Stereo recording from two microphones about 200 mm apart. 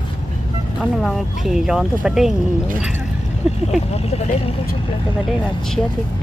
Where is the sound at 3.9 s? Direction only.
30° left (ahead or behind).